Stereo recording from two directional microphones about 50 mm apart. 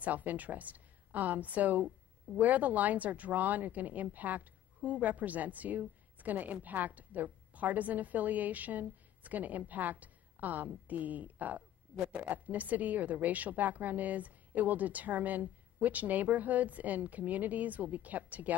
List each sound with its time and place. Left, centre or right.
0.0 s a woman's voice: right